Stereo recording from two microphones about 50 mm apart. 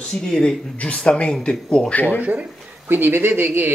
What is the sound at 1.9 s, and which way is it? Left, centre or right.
Speech, left.